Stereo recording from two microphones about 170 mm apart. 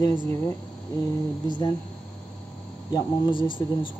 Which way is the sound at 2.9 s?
25° left (ahead or behind).